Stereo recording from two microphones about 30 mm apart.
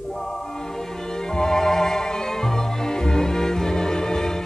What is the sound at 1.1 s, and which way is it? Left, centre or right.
Music, left.